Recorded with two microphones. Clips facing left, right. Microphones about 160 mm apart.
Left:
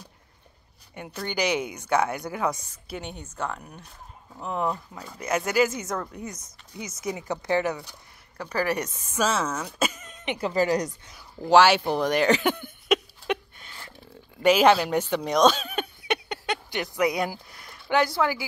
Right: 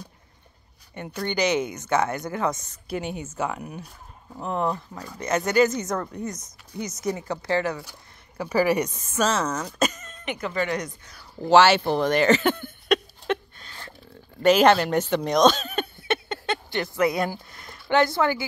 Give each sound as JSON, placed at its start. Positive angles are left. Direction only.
{"t": 0.9, "sound": "speech", "side_deg": 5}
{"t": 2.9, "sound": "a woman's voice", "side_deg": -5}
{"t": 8.4, "sound": "a woman's voice", "side_deg": -5}
{"t": 9.1, "sound": "speech", "side_deg": 10}
{"t": 10.2, "sound": "speech", "side_deg": 30}
{"t": 11.4, "sound": "speech", "side_deg": 10}
{"t": 13.3, "sound": "a sound", "side_deg": 15}
{"t": 14.4, "sound": "speech", "side_deg": 5}